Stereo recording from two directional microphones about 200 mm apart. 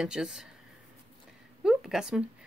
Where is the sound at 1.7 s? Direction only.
5° right (ahead or behind).